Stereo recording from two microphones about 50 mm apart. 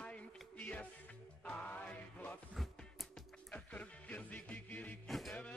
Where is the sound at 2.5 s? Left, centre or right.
Centre.